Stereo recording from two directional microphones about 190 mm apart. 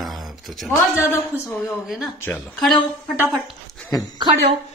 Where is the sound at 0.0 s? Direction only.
Centre (ahead or behind).